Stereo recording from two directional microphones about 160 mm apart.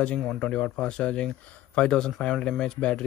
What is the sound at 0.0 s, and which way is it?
Speech, 10° left (ahead or behind).